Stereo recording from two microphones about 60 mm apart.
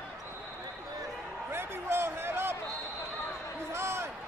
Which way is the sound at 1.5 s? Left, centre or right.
Right.